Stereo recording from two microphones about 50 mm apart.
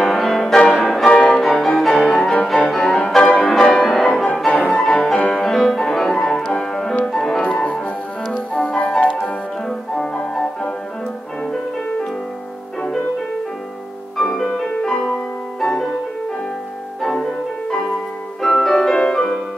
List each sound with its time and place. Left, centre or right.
0.0 s music: centre
1.0 s violin: centre
1.3 s music: centre
7.4 s music: left
14.1 s music: centre
17.0 s music: centre